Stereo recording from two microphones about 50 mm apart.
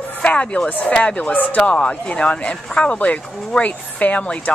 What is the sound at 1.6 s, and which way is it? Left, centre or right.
Speech, left.